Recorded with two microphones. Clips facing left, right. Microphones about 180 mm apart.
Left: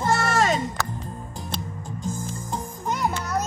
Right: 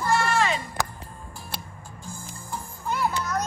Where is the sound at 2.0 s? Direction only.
20° left (ahead or behind).